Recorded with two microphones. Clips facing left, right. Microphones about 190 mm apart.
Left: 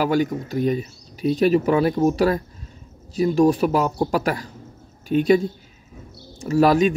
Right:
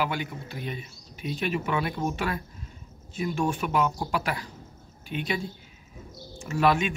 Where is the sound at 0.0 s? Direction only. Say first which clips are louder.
Left 10 dB; 40° left (ahead or behind).